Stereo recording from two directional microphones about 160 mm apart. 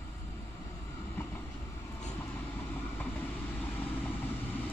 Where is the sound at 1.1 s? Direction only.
15° left (ahead or behind).